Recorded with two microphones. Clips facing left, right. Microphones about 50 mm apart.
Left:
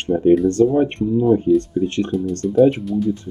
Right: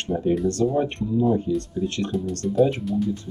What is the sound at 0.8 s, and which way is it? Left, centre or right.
Speech, left.